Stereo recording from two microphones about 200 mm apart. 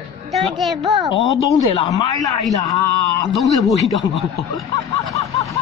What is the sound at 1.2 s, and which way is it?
A man's voice, 15° left (ahead or behind).